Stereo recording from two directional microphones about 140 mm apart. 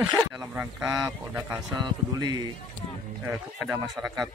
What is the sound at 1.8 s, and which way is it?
Speech, 30° right (ahead or behind).